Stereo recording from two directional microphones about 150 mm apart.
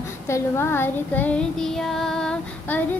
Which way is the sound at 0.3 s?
15° left (ahead or behind).